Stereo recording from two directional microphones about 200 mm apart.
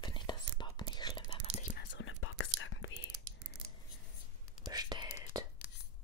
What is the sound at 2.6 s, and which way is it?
Whispering, 70° left (ahead or behind).